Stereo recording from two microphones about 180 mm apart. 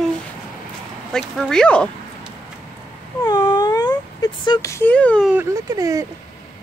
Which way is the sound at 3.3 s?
20° left (ahead or behind).